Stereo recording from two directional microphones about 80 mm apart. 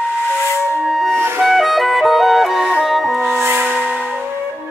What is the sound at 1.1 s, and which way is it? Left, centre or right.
Music, right.